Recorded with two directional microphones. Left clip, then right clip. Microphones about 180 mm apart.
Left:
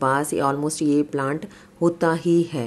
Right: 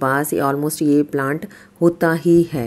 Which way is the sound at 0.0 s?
20° right (ahead or behind).